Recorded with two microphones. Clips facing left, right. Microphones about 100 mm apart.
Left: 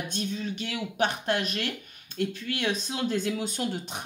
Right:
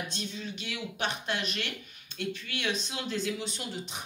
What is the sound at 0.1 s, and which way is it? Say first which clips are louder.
Speech: left 6 dB; 50° left (ahead or behind).